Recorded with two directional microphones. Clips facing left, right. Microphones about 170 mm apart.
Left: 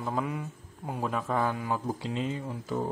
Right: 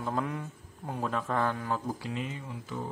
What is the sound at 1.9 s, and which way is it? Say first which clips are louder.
Speech: left 4 dB; 25° left (ahead or behind).